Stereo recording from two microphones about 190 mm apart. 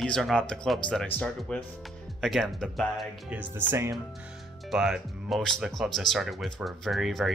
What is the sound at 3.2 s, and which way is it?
Speech, 10° right (ahead or behind).